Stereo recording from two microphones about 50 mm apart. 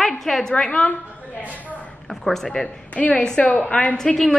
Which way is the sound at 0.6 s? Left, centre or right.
Left.